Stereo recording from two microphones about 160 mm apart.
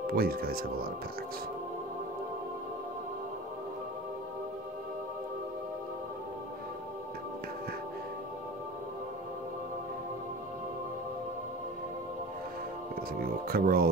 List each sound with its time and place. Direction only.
0.0 s speech: 70° right (ahead or behind)
13.2 s speech: 65° right (ahead or behind)